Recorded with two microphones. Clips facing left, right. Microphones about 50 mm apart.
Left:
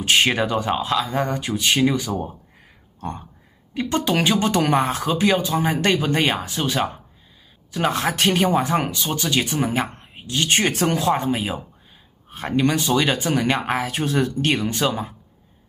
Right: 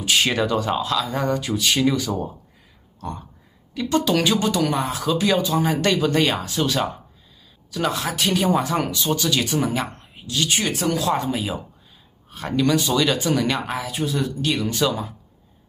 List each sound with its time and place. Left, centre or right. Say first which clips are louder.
0.0 s speech: left 3 dB; left
0.3 s speech: even; centre
3.0 s a sound: left 1 dB; left
3.7 s speech: right 1 dB; left
5.0 s speech: left 1 dB; left
7.9 s speech: left 5 dB; left
8.6 s speech: even; left
11.0 s speech: left 2 dB; left
13.7 s speech: left 3 dB; left